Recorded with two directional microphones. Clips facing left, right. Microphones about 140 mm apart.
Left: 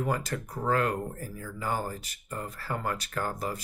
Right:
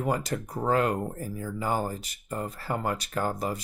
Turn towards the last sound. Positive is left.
turn(degrees=-20)  # may be behind; listen again after turning